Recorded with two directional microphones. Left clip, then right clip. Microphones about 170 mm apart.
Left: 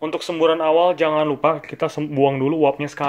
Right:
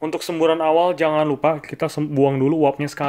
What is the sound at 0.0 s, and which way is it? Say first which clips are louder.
Speech: left 1 dB; 30° right (ahead or behind).